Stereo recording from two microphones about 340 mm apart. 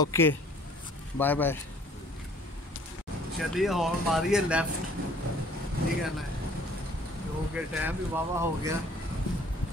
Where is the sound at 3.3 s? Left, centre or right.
Centre.